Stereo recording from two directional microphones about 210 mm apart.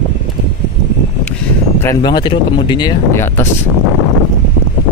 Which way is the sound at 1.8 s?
20° left (ahead or behind).